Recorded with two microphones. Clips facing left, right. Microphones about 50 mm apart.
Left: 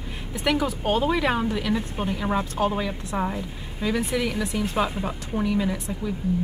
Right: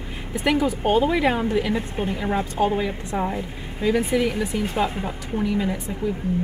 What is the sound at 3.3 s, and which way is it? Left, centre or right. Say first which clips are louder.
A woman's voice: right 3 dB; right.